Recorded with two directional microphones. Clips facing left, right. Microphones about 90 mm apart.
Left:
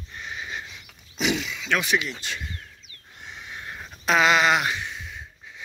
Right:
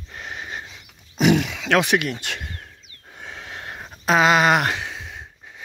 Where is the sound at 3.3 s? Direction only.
75° right (ahead or behind).